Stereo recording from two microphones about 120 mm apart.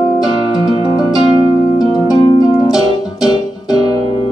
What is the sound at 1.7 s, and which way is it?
Harp, 35° left (ahead or behind).